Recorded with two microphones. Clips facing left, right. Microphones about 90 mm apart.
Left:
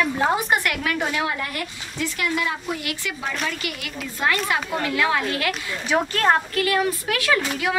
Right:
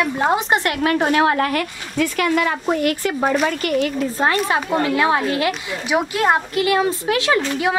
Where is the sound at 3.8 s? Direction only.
35° right (ahead or behind).